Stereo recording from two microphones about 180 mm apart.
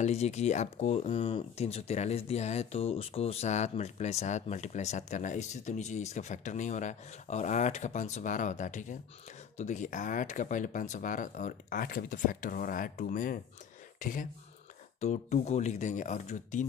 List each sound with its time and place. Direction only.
0.0 s speech: 35° left (ahead or behind)